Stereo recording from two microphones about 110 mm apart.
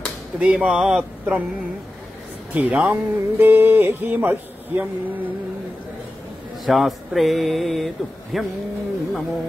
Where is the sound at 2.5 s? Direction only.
10° right (ahead or behind).